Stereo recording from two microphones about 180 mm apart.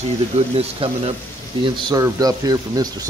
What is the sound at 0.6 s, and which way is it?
Speech, 30° right (ahead or behind).